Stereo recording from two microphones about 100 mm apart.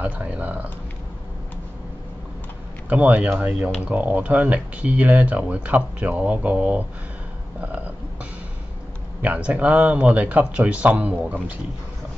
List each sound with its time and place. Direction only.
0.0 s speech: 15° right (ahead or behind)
2.9 s speech: 15° right (ahead or behind)
9.2 s speech: 15° right (ahead or behind)